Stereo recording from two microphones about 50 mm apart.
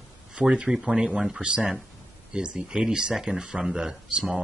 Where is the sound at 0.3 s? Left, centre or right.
Right.